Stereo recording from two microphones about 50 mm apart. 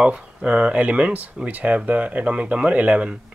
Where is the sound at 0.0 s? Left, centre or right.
Right.